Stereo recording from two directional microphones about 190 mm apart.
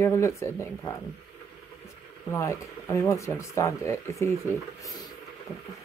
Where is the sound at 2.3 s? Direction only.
15° left (ahead or behind).